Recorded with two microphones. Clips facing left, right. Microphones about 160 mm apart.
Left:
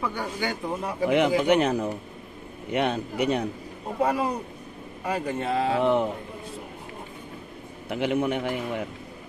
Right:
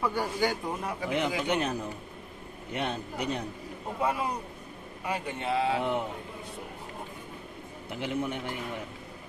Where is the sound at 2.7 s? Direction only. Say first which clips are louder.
Left 7 dB; 90° left.